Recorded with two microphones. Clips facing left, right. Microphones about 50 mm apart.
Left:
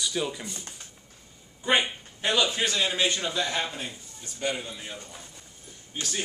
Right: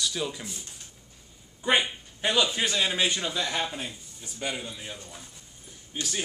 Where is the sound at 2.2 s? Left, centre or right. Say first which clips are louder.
Even; centre.